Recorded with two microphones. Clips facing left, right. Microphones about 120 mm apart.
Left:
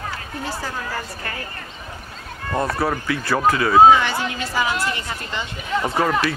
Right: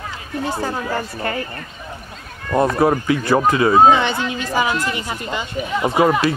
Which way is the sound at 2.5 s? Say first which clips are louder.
Right 6 dB; 20° right (ahead or behind).